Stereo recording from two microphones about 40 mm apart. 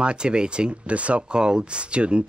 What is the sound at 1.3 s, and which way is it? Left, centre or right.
Speech, right.